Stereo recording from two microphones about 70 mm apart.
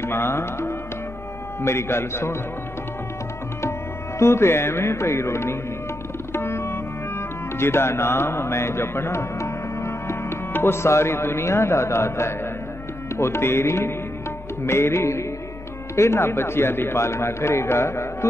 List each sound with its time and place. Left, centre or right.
0.0 s a man's voice: left
4.2 s a man's voice: left